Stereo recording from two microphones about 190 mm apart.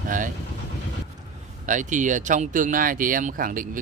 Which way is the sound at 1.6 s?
40° right (ahead or behind).